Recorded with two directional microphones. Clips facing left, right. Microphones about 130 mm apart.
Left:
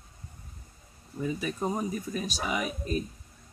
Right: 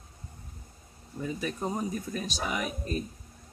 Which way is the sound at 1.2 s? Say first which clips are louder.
Left 2 dB; 5° left (ahead or behind).